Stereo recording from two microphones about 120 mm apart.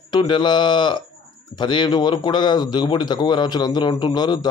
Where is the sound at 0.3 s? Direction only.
40° left (ahead or behind).